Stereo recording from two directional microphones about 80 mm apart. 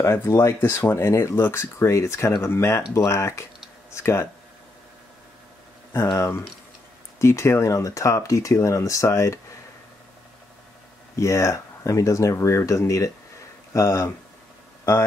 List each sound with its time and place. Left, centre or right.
0.0 s speech: left
6.1 s speech: left
11.1 s speech: left